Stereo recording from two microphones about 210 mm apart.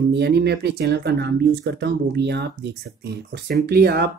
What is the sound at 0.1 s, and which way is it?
Speech, 50° right (ahead or behind).